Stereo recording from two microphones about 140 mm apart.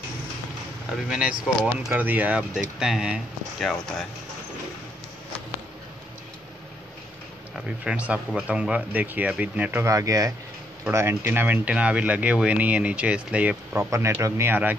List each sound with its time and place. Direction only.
1.0 s speech: 5° right (ahead or behind)
7.5 s speech: 5° right (ahead or behind)
13.7 s speech: 20° right (ahead or behind)